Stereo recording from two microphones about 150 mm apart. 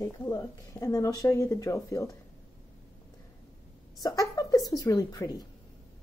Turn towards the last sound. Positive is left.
turn(degrees=25)  # may be behind; listen again after turning